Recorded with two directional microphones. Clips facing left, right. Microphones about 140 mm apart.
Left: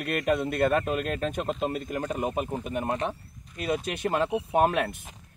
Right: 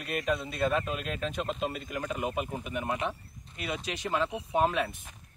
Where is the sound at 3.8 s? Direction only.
50° left (ahead or behind).